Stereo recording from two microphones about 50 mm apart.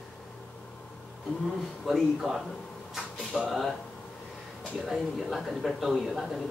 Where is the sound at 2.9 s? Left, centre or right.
Centre.